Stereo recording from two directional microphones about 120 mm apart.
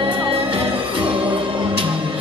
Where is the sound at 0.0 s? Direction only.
45° right (ahead or behind).